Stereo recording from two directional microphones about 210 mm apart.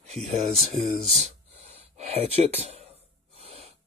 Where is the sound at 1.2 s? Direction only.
30° right (ahead or behind).